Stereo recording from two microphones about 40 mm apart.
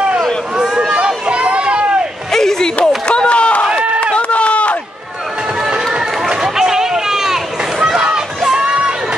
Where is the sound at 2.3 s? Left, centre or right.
Centre.